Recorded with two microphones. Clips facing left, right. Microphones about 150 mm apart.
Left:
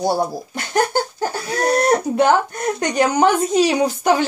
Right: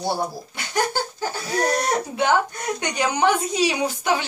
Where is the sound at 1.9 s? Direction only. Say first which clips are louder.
Left 6 dB; 45° left (ahead or behind).